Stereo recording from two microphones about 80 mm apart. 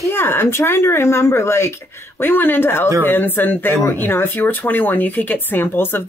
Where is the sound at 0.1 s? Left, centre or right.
Left.